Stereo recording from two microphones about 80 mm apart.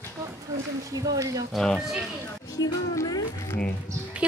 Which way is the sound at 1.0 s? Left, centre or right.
Right.